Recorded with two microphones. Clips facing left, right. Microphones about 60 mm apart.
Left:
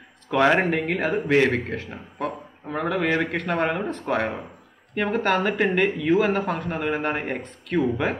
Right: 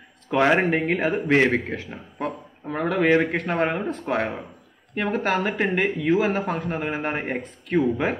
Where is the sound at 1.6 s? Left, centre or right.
Left.